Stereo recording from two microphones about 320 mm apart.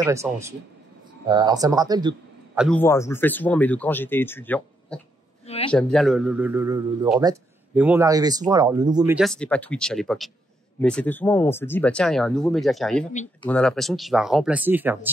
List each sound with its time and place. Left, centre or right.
0.0 s a man's voice: centre
2.6 s a man's voice: centre
13.1 s speech: left
13.5 s a man's voice: centre